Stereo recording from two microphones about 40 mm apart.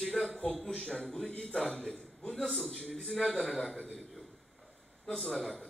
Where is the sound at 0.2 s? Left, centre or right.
Right.